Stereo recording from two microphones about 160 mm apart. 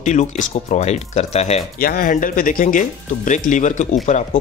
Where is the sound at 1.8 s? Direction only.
60° left (ahead or behind).